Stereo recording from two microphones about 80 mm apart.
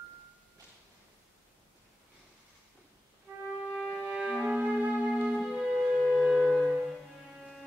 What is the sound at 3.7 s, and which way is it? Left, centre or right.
Music, centre.